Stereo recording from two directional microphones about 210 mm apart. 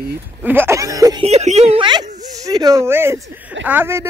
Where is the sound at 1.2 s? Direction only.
30° right (ahead or behind); by 4.0 s 10° right (ahead or behind).